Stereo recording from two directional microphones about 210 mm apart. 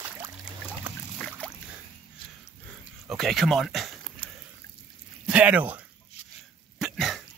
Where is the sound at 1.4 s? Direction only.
5° left (ahead or behind).